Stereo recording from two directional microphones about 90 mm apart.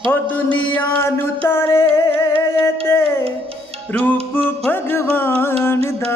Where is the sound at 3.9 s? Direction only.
15° left (ahead or behind).